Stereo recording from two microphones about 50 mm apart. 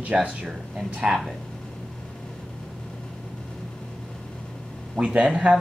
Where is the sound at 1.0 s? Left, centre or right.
Centre.